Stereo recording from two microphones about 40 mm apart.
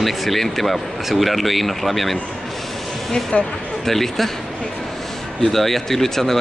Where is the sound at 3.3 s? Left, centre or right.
Left.